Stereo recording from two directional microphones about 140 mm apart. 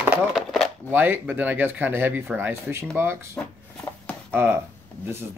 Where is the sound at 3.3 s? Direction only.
10° left (ahead or behind).